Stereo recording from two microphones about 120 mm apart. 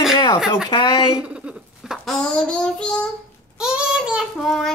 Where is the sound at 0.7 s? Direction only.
35° left (ahead or behind).